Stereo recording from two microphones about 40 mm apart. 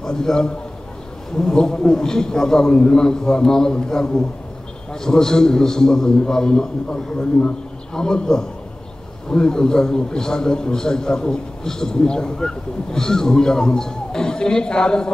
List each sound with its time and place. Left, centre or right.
0.0 s a man's voice: centre